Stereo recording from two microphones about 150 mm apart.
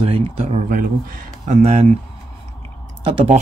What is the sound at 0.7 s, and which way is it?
Speech, 65° right (ahead or behind).